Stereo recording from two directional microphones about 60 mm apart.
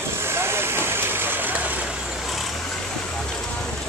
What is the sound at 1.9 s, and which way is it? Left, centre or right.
Vehicle, centre.